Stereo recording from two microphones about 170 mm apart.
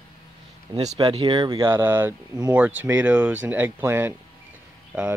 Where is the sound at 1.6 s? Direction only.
10° right (ahead or behind).